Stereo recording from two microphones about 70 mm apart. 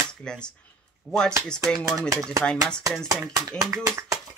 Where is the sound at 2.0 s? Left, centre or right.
Right.